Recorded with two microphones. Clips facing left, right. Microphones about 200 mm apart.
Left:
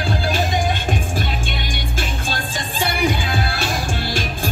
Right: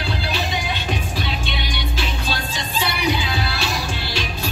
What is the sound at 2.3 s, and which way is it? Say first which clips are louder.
Music: even; 50° left (ahead or behind).